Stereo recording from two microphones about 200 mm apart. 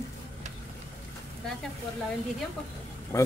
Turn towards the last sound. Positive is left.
turn(degrees=15)  # may be behind; listen again after turning